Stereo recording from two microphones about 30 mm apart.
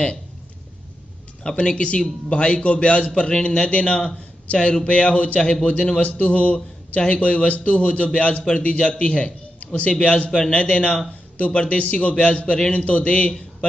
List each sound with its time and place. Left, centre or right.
1.4 s a man's voice: left
3.2 s a man's voice: left
3.5 s a man's voice: left
5.5 s a man's voice: left
5.9 s a man's voice: left